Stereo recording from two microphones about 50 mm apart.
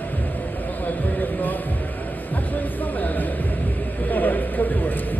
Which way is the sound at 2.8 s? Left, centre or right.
Left.